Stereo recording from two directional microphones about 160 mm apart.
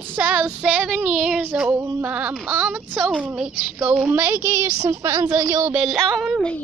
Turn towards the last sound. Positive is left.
turn(degrees=5)  # may be behind; listen again after turning